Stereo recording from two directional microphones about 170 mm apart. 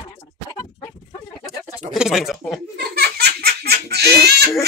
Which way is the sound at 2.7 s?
70° right (ahead or behind).